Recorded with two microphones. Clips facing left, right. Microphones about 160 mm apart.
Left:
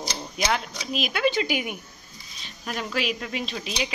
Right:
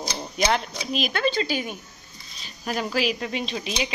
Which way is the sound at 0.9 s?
Centre (ahead or behind).